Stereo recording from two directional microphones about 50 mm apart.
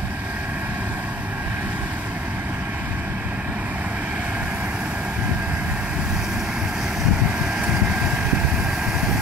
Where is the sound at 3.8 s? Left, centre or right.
Right.